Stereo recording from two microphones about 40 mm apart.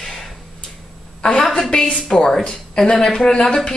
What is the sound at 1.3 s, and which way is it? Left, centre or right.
A woman's voice, centre.